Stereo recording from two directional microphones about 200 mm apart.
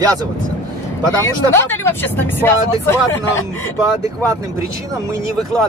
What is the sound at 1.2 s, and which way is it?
Speech, 10° left (ahead or behind).